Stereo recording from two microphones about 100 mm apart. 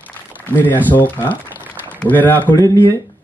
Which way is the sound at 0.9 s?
20° left (ahead or behind).